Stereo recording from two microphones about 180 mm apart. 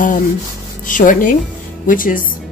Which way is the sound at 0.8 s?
50° left (ahead or behind).